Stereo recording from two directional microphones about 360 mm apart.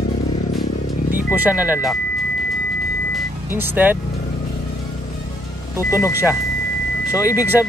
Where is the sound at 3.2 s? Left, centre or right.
Centre.